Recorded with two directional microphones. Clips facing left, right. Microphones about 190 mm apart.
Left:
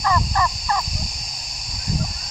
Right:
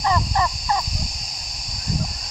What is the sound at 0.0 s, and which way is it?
Turkey, 20° right (ahead or behind).